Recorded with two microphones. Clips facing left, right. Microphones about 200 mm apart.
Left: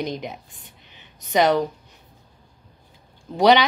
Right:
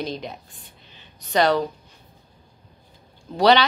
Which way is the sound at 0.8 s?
15° left (ahead or behind).